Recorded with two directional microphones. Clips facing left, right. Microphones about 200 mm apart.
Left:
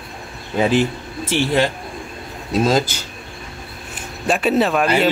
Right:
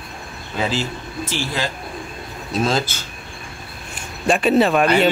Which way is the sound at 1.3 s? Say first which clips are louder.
Left 9 dB; 60° left (ahead or behind).